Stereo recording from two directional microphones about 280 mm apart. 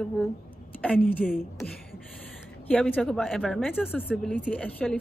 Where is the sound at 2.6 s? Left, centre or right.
Centre.